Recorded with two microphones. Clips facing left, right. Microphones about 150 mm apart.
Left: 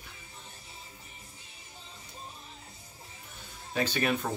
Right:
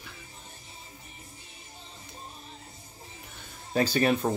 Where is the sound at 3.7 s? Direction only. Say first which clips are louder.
Right 5 dB; 35° right (ahead or behind).